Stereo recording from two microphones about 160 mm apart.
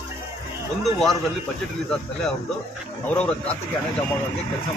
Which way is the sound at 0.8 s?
Centre (ahead or behind).